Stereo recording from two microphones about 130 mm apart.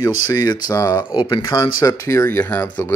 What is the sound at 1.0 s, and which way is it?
Speech, 40° left (ahead or behind).